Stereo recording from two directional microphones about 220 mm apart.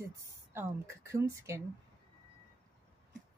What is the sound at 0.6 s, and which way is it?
A woman's voice, 10° right (ahead or behind).